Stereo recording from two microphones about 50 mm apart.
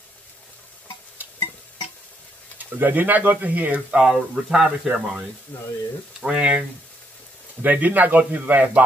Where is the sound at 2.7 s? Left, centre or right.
Right.